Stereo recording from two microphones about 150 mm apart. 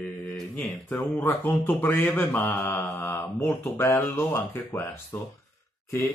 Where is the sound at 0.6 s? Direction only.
5° left (ahead or behind).